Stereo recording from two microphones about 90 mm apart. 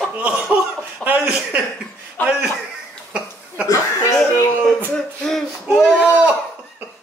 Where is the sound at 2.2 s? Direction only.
20° left (ahead or behind).